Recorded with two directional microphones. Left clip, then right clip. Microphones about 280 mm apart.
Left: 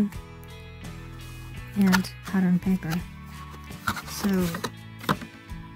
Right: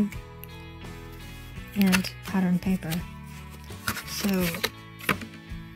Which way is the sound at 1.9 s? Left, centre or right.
Centre.